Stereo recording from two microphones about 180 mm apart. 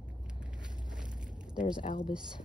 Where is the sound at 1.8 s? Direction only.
30° left (ahead or behind).